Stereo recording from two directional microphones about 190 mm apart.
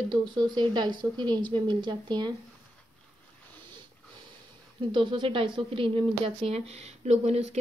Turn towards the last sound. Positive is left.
turn(degrees=-35)  # may be behind; listen again after turning